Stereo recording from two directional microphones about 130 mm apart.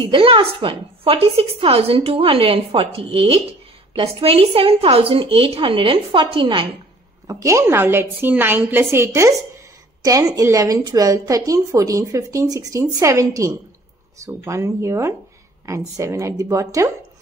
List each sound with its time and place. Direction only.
0.0 s a woman's voice: 45° right (ahead or behind)
7.2 s a woman's voice: 25° right (ahead or behind)